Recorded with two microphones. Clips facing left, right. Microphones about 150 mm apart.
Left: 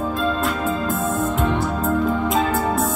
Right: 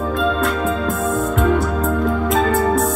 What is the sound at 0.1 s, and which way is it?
Music, centre (ahead or behind).